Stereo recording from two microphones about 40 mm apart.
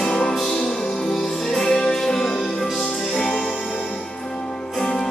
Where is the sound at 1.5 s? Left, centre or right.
Centre.